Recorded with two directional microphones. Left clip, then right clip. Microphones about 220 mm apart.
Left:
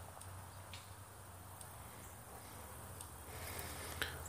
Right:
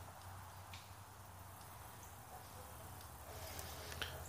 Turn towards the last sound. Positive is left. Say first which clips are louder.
# left 4 dB
turn(degrees=20)  # may be behind; listen again after turning